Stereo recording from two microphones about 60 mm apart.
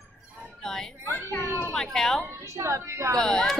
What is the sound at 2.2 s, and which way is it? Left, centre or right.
Speech, right.